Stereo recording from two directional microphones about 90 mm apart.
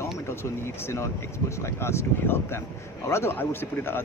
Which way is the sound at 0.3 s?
30° left (ahead or behind).